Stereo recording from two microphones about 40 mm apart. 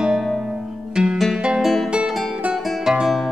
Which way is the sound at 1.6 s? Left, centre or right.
Centre.